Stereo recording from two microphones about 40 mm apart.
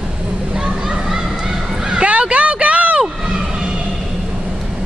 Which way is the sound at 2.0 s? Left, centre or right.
Right.